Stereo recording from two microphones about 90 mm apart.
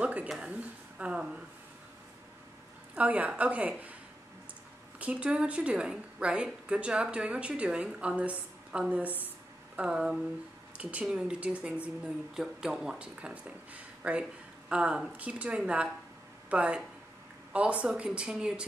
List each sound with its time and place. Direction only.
0.0 s a sound: 15° right (ahead or behind)
0.5 s a woman's voice: 15° right (ahead or behind)
3.0 s a woman's voice: 15° right (ahead or behind)
5.0 s a woman's voice: 15° right (ahead or behind)